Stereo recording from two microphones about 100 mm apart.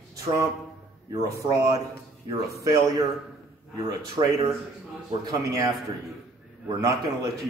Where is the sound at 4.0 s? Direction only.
35° right (ahead or behind).